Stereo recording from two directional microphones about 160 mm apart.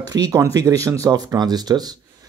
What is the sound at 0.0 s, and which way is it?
Speech, 25° right (ahead or behind).